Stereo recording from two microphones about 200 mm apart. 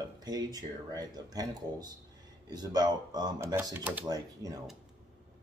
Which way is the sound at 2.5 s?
20° right (ahead or behind).